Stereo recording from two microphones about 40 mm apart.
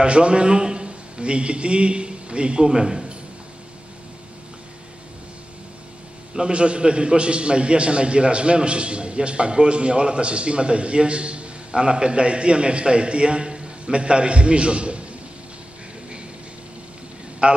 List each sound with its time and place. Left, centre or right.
0.0 s a man's voice: right
6.3 s a man's voice: right
17.4 s a man's voice: right